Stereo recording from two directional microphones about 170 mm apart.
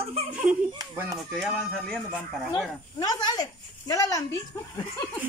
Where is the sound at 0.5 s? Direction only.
5° right (ahead or behind).